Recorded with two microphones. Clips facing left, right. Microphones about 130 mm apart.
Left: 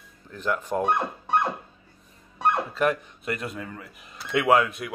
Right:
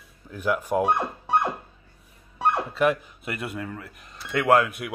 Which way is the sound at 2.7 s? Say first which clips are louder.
Right 2 dB; 5° right (ahead or behind).